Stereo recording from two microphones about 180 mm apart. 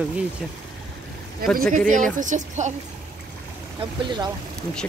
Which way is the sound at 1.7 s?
45° right (ahead or behind).